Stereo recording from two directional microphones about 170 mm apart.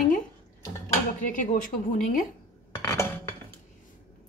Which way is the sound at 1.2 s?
50° left (ahead or behind).